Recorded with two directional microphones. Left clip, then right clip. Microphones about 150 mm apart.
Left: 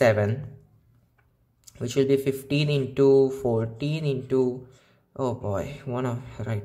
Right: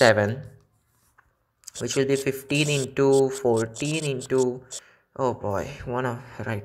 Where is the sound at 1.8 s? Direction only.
10° right (ahead or behind).